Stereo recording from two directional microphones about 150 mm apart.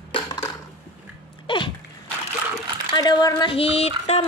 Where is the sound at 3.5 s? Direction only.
40° left (ahead or behind).